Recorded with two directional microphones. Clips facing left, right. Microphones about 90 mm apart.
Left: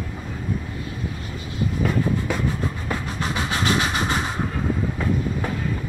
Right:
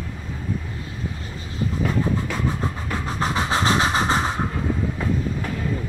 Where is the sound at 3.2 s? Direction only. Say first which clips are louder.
Right 5 dB; 30° right (ahead or behind).